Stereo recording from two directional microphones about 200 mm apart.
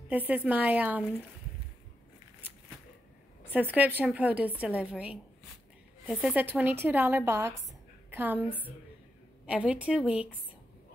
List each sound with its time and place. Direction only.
0.1 s speech: 10° right (ahead or behind)
3.5 s a woman's voice: 10° right (ahead or behind)
8.5 s a woman's voice: 10° left (ahead or behind)
9.5 s a woman's voice: 5° right (ahead or behind)